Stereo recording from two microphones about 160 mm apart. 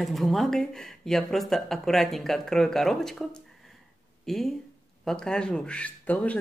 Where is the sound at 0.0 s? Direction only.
Centre (ahead or behind).